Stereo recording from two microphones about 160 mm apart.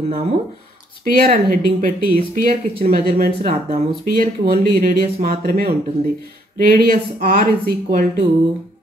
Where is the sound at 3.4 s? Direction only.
45° right (ahead or behind).